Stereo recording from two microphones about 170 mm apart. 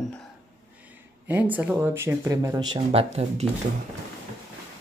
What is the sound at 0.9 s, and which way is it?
Speech, 10° right (ahead or behind).